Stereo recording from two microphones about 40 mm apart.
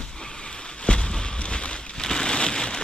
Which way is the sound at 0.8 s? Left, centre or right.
Left.